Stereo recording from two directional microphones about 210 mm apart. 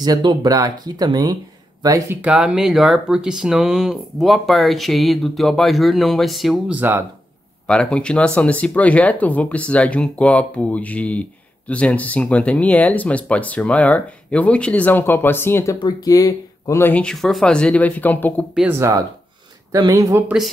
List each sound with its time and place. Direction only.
0.0 s speech: 20° right (ahead or behind)
7.6 s speech: 5° left (ahead or behind)
18.5 s speech: 5° right (ahead or behind)